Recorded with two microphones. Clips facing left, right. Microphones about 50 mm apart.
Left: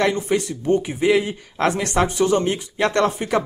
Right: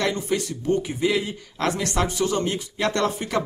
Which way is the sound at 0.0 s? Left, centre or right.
Centre.